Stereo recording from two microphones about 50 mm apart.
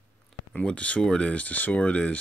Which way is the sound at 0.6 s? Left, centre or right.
Left.